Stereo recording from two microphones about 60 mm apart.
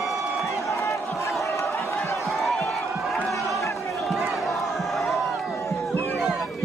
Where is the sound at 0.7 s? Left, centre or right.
Left.